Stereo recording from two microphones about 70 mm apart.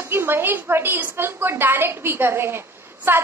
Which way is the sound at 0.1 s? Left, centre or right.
Right.